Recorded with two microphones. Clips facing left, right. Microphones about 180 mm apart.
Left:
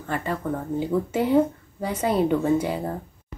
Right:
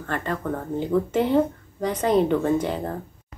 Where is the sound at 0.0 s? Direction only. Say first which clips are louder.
Even; 10° left (ahead or behind).